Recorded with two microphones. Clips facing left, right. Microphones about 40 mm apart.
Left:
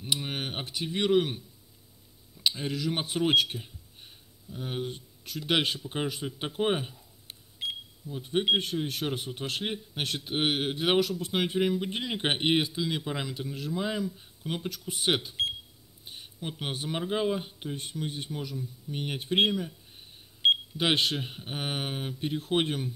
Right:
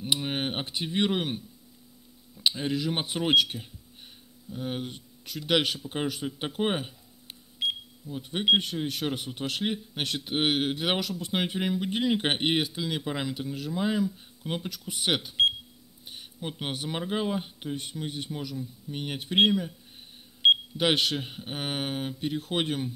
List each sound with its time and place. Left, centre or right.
0.3 s speech: right
2.5 s speech: right
4.5 s speech: centre
5.5 s speech: centre
8.1 s speech: centre
16.1 s a sound: centre
16.8 s speech: centre
20.9 s speech: centre